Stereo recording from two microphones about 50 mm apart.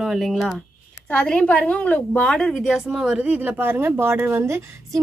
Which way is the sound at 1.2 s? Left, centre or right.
Centre.